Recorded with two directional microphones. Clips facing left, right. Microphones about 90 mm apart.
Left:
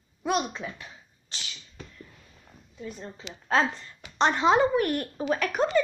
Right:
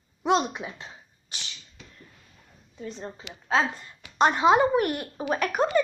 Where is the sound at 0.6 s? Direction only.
20° right (ahead or behind).